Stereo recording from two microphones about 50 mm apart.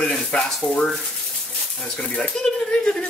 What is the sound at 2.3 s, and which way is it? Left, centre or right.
Speech, centre.